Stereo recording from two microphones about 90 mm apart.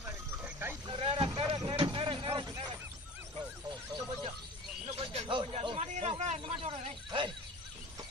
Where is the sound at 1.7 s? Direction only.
70° right (ahead or behind); by 2.7 s 50° right (ahead or behind).